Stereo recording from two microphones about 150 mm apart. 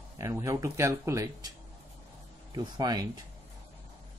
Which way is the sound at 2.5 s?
25° right (ahead or behind).